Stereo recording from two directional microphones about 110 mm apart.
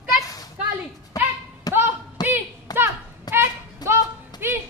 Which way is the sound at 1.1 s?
35° left (ahead or behind).